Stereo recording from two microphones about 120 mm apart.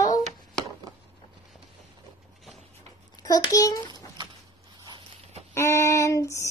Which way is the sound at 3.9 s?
40° right (ahead or behind).